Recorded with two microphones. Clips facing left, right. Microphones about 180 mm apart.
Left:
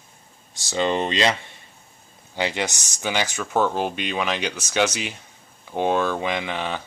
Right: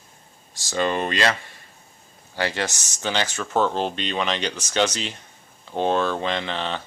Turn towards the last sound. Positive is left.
turn(degrees=10)  # may be behind; listen again after turning